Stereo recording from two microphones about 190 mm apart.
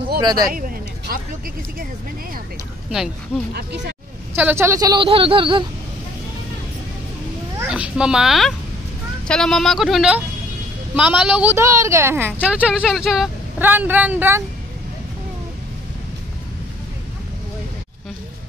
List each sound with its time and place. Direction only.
0.2 s speech: 20° right (ahead or behind)
0.5 s a sound: 50° right (ahead or behind)
3.5 s speech: 65° right (ahead or behind)
4.4 s a woman's voice: 10° right (ahead or behind)
7.5 s a woman's voice: 5° right (ahead or behind)